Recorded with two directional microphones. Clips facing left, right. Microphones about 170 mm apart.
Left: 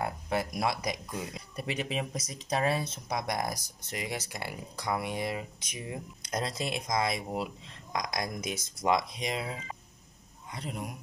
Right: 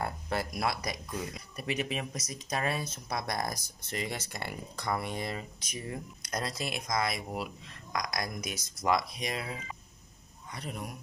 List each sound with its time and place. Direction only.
0.0 s speech: 15° left (ahead or behind)
3.2 s speech: 15° left (ahead or behind)